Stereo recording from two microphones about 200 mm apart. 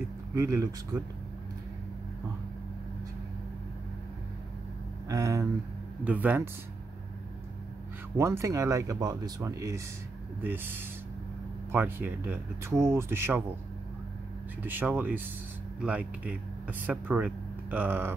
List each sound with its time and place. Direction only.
0.3 s speech: 15° right (ahead or behind)
5.0 s speech: 15° right (ahead or behind)
8.2 s speech: 15° right (ahead or behind)
14.6 s speech: 10° right (ahead or behind)